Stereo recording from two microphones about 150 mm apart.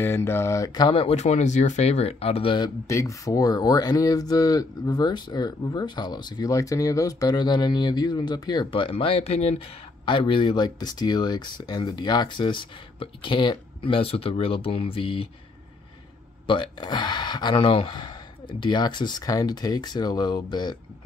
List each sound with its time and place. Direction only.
0.0 s mantra: 15° left (ahead or behind)
0.8 s speech: 40° left (ahead or behind)
2.9 s speech: 20° left (ahead or behind); by 15.2 s 35° left (ahead or behind)
16.4 s speech: 30° left (ahead or behind)